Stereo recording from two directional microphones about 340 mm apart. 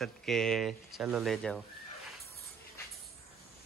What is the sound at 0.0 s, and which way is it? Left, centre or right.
Speech, centre.